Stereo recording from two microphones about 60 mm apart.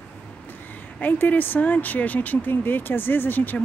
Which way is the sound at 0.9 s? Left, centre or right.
Left.